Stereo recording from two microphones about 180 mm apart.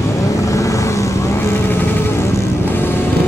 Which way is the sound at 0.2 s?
20° left (ahead or behind).